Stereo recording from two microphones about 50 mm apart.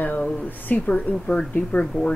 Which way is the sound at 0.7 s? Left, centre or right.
Left.